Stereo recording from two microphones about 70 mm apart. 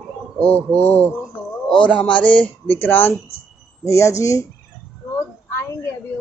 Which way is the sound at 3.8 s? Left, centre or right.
Left.